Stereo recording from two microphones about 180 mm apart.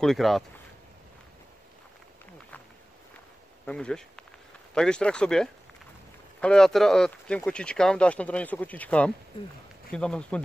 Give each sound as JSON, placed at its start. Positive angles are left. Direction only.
{"t": 0.0, "sound": "speech", "side_deg": 0}
{"t": 3.6, "sound": "speech", "side_deg": 5}